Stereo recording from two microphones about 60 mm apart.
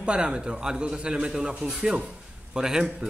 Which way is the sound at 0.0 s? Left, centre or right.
Centre.